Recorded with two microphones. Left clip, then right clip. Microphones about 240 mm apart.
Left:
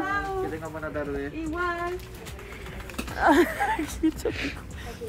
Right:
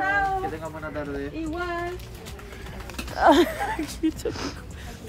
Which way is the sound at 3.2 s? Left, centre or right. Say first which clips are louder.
Right 3 dB; centre.